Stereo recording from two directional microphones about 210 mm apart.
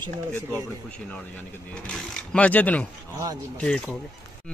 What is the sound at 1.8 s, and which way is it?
Speech, 5° left (ahead or behind).